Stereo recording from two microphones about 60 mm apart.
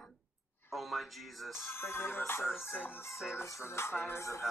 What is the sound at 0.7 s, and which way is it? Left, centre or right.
Speech, centre.